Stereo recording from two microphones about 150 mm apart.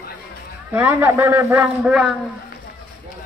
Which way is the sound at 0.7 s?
15° right (ahead or behind).